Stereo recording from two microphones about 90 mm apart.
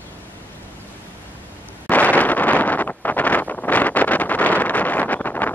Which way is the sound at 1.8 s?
15° left (ahead or behind).